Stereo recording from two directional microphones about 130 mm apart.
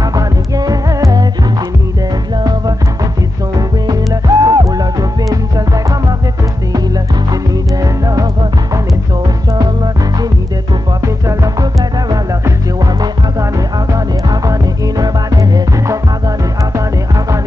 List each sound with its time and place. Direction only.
0.1 s music: 30° right (ahead or behind)
3.5 s music: 30° right (ahead or behind)
7.8 s music: 25° right (ahead or behind)
11.2 s music: 30° right (ahead or behind)
13.9 s music: 25° right (ahead or behind)